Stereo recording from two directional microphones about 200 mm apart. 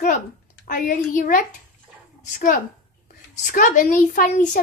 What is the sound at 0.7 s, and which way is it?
A child's voice, 40° left (ahead or behind).